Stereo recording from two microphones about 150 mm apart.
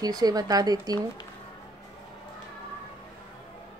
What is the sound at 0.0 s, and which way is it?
Speech, 25° right (ahead or behind).